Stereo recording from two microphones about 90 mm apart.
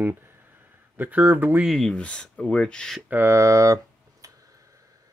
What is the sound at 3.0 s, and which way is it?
Speech, 20° right (ahead or behind).